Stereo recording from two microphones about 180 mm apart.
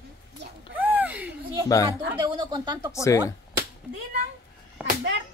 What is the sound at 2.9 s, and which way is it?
Speech, 15° left (ahead or behind).